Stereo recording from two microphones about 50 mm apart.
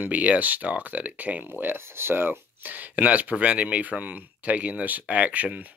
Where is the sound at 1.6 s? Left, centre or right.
Right.